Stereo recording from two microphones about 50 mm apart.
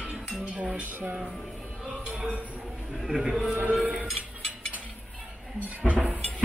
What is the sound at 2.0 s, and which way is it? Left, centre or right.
Music, right.